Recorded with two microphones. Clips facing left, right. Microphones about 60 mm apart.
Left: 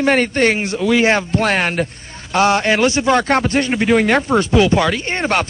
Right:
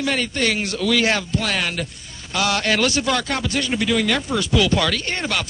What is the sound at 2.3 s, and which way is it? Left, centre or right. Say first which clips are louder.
Speech: left 6 dB; left.